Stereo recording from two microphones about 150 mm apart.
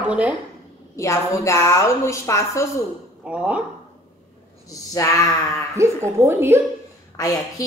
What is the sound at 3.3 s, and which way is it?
Speech, 10° right (ahead or behind).